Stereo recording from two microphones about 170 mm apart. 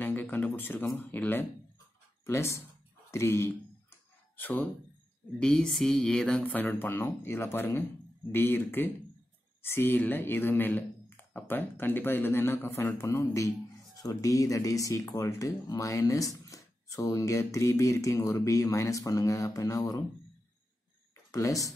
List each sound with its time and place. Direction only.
0.0 s a sound: 10° left (ahead or behind)
0.9 s speech: 10° left (ahead or behind)
21.3 s speech: 20° left (ahead or behind)